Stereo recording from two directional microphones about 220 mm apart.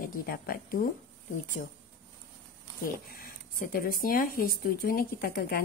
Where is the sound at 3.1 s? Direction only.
40° left (ahead or behind).